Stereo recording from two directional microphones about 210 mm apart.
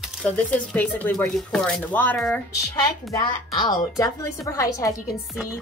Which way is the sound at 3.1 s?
20° left (ahead or behind).